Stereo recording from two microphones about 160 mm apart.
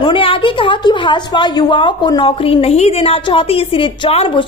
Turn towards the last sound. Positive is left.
turn(degrees=35)  # may be behind; listen again after turning